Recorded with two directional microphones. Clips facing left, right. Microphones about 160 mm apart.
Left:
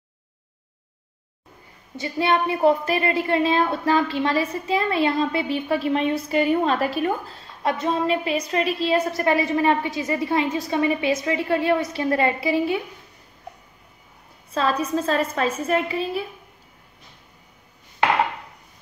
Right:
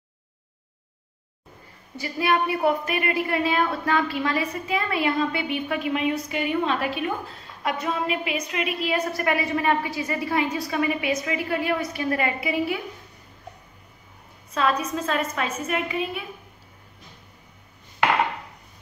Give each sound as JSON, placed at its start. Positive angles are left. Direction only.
{"t": 2.0, "sound": "a woman's voice", "side_deg": 25}
{"t": 14.5, "sound": "a woman's voice", "side_deg": 30}